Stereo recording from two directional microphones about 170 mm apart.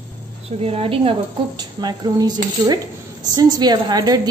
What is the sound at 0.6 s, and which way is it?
A woman's voice, 35° right (ahead or behind).